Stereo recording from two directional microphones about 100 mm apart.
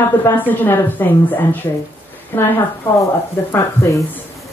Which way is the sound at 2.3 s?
20° left (ahead or behind).